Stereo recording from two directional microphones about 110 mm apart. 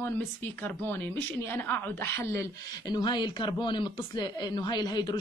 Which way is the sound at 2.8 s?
40° left (ahead or behind).